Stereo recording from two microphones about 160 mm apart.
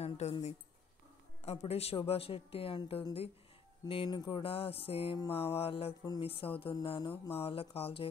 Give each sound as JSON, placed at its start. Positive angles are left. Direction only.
{"t": 0.0, "sound": "speech", "side_deg": 40}